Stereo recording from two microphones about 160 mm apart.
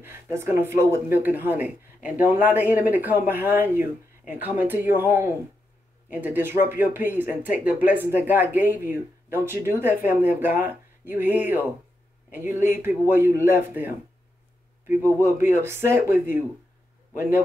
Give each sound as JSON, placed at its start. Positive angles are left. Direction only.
{"t": 0.0, "sound": "speech", "side_deg": -15}
{"t": 15.6, "sound": "speech", "side_deg": -15}